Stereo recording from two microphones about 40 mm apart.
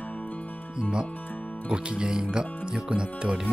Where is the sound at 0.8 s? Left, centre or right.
Right.